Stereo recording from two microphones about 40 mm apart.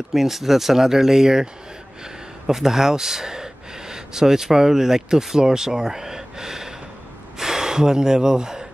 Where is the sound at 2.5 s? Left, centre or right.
Centre.